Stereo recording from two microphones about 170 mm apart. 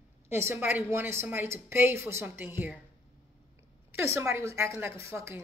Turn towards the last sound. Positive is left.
turn(degrees=-15)  # may be behind; listen again after turning